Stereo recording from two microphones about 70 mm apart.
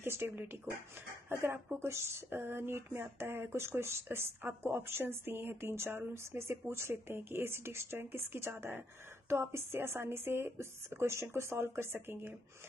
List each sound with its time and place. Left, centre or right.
0.0 s speech: right